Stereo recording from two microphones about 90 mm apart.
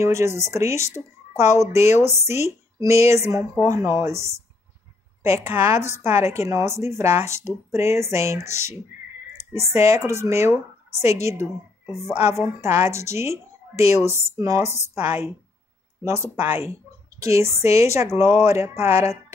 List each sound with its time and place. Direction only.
0.0 s speech: 30° right (ahead or behind)
5.5 s speech: 30° right (ahead or behind)
17.2 s speech: 30° right (ahead or behind)